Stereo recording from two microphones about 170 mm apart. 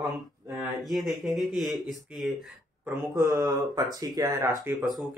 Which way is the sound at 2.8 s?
15° right (ahead or behind).